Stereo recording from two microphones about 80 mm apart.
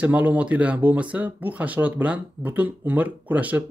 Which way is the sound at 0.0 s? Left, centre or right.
Right.